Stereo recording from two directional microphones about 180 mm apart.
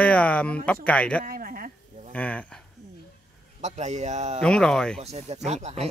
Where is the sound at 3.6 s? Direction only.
40° right (ahead or behind).